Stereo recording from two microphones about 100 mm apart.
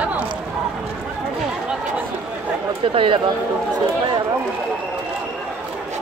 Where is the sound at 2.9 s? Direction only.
60° right (ahead or behind).